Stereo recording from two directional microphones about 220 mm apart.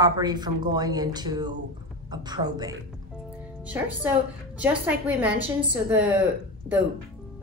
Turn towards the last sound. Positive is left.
turn(degrees=-10)  # may be behind; listen again after turning